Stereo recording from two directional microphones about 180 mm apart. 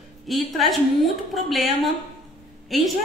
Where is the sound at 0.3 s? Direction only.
Centre (ahead or behind).